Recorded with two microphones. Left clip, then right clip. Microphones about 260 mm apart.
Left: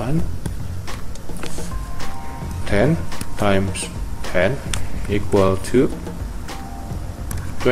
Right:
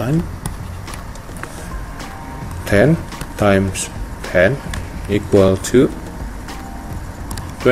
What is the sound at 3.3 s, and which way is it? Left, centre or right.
Speech, centre.